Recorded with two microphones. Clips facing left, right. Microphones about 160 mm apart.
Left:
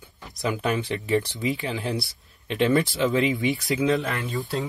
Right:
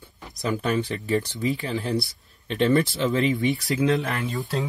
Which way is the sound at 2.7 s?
20° left (ahead or behind).